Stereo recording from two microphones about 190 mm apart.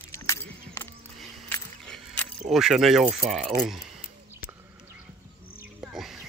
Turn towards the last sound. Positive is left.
turn(degrees=0)  # may be behind; listen again after turning